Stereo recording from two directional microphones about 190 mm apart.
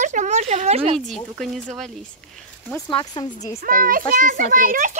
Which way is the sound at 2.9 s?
25° left (ahead or behind).